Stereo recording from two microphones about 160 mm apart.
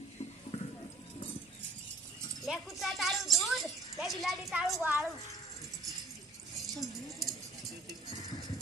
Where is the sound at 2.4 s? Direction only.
Centre (ahead or behind).